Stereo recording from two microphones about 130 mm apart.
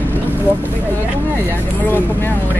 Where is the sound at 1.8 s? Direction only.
15° left (ahead or behind).